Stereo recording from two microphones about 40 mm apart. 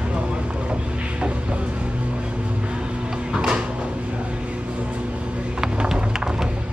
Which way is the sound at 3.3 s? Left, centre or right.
Right.